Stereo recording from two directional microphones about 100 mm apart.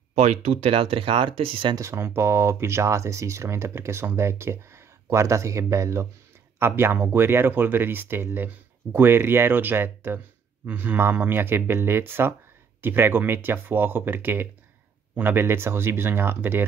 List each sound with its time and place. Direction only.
0.1 s speech: 90° right; by 1.7 s 70° right (ahead or behind)
1.8 s speech: 25° right (ahead or behind)